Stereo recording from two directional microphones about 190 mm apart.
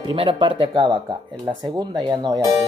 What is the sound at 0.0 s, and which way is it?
Speech, 25° right (ahead or behind).